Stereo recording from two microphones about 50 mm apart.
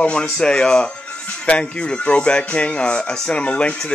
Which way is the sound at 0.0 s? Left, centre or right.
Centre.